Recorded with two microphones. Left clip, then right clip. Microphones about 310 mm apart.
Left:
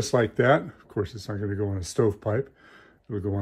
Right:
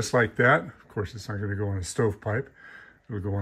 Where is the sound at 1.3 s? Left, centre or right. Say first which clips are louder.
Left 2 dB; left.